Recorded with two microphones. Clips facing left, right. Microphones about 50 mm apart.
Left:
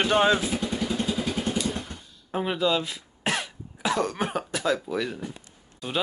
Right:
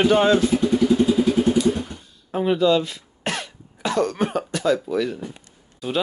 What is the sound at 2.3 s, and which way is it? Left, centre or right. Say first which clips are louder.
Cough: right 6 dB; centre.